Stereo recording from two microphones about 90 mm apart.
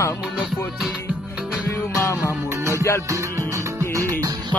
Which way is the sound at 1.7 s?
25° left (ahead or behind).